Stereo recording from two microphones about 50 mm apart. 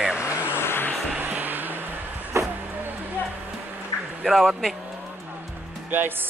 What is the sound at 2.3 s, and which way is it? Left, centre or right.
Vehicle, right.